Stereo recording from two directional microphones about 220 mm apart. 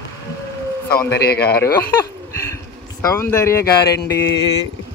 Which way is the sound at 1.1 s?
45° left (ahead or behind).